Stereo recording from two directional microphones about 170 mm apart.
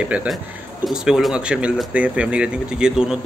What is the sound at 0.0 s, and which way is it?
Speech, 5° right (ahead or behind).